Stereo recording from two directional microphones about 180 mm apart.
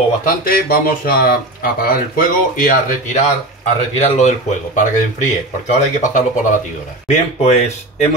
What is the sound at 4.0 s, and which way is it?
Speech, 40° left (ahead or behind).